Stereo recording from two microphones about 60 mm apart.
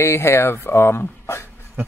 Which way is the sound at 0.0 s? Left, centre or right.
Left.